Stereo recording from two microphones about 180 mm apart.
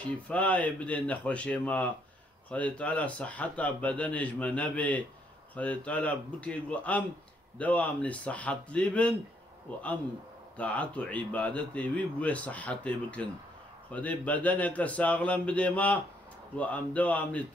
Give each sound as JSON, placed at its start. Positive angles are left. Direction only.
{"t": 0.3, "sound": "speech", "side_deg": 5}
{"t": 9.7, "sound": "a man's voice", "side_deg": -30}
{"t": 10.6, "sound": "speech", "side_deg": 5}